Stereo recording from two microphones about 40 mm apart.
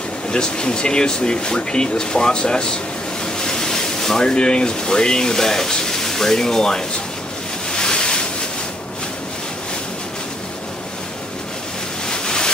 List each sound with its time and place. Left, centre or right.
0.3 s speech: left
7.7 s ocean: centre
12.1 s a sound: centre